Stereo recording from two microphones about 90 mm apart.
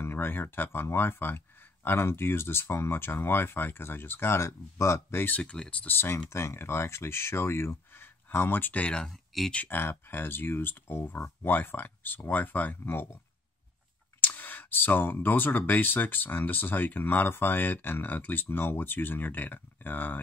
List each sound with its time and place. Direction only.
0.0 s speech: 25° left (ahead or behind)
5.2 s speech: 15° left (ahead or behind)
9.0 s speech: centre (ahead or behind)
9.5 s speech: 20° left (ahead or behind)
14.2 s speech: 20° left (ahead or behind)